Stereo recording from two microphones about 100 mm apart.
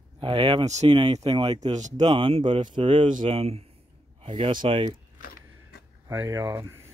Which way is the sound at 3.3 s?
90° right.